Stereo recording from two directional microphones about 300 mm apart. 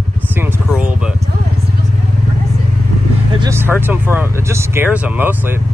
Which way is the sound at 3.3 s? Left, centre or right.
Centre.